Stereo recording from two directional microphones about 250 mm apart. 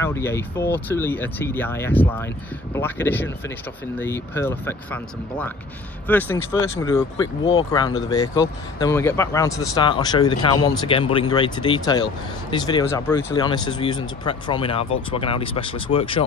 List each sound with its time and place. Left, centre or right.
0.0 s speech: centre